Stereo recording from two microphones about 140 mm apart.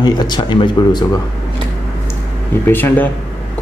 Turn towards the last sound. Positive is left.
turn(degrees=15)  # may be behind; listen again after turning